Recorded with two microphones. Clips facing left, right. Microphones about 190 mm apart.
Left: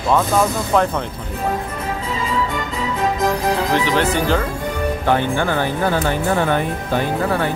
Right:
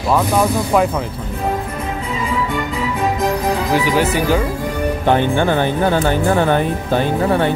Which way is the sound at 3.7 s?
10° right (ahead or behind).